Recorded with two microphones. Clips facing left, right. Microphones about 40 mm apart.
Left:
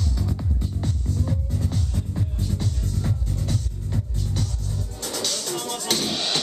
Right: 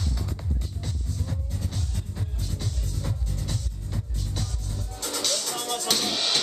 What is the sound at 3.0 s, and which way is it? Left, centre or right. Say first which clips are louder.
Music: left 4 dB; centre.